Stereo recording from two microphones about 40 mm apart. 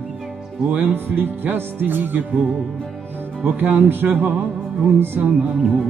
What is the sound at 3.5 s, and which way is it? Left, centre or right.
Music, right.